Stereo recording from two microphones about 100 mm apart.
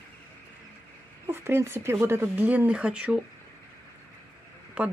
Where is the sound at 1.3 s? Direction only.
25° right (ahead or behind); by 3.2 s 10° right (ahead or behind).